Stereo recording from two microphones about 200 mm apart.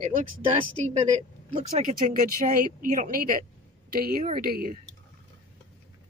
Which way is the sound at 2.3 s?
45° right (ahead or behind).